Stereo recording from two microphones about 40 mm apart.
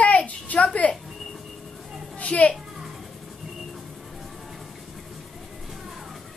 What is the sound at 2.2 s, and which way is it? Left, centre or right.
Children playing, left.